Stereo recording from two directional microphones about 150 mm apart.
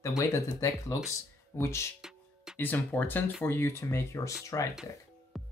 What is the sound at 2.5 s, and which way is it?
Speech, 15° left (ahead or behind).